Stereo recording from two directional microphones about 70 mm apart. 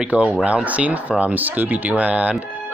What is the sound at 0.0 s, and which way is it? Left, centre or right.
Speech, centre.